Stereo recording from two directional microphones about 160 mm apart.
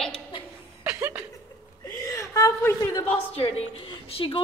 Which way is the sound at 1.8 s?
20° left (ahead or behind).